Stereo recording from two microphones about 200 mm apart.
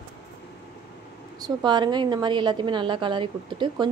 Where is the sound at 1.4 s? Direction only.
20° right (ahead or behind).